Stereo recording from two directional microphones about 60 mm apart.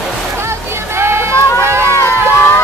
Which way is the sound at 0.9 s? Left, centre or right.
Right.